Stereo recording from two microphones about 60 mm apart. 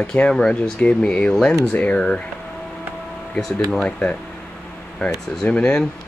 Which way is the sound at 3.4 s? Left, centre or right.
Centre.